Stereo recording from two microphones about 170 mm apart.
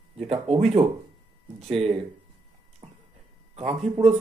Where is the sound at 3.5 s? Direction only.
35° right (ahead or behind).